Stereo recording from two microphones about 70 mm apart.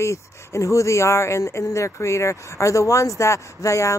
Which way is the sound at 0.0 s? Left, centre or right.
Left.